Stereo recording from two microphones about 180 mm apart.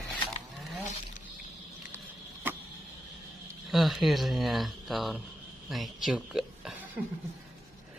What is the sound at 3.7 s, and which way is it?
Speech, centre (ahead or behind).